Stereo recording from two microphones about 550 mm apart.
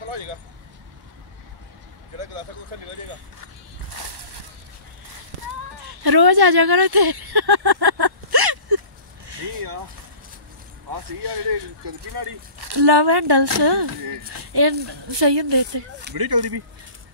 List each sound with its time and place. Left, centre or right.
0.1 s vehicle: right
2.1 s vehicle: right
5.9 s speech: right
9.3 s a sound: right
11.2 s speech: right